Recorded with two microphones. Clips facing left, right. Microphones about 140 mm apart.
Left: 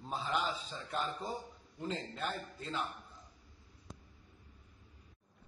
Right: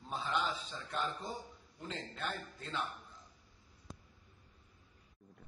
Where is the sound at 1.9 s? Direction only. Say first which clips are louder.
Left 2 dB; 35° left (ahead or behind).